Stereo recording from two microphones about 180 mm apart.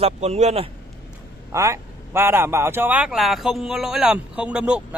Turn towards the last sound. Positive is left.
turn(degrees=-5)  # may be behind; listen again after turning